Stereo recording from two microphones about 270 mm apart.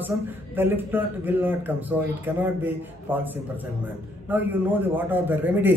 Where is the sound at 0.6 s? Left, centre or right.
Centre.